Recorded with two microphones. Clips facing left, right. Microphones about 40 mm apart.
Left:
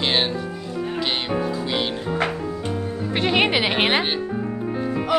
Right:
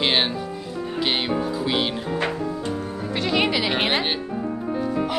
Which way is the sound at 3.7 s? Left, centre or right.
Centre.